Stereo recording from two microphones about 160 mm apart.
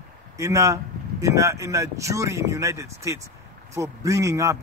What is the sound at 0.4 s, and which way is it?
Speech, 20° right (ahead or behind).